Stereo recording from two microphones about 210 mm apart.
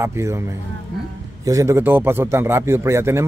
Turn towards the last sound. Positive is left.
turn(degrees=-15)  # may be behind; listen again after turning